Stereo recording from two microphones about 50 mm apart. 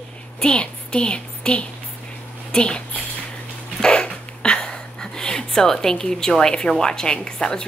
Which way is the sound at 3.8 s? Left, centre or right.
Centre.